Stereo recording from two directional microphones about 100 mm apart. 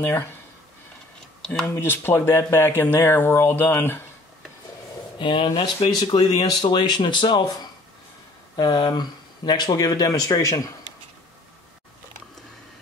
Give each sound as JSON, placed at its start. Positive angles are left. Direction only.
{"t": 0.0, "sound": "speech", "side_deg": 25}
{"t": 1.4, "sound": "speech", "side_deg": 10}
{"t": 1.7, "sound": "speech", "side_deg": 20}
{"t": 5.2, "sound": "speech", "side_deg": 55}
{"t": 6.5, "sound": "speech", "side_deg": 50}